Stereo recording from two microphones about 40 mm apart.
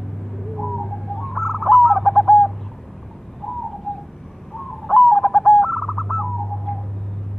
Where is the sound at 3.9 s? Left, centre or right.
Centre.